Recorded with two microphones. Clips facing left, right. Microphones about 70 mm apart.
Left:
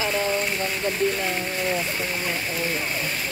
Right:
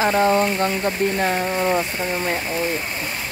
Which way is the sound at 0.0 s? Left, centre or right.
Right.